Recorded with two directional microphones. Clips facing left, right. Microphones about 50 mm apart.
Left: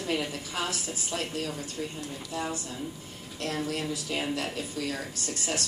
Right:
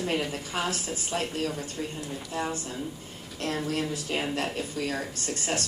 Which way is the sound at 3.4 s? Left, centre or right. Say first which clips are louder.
Right 2 dB; right.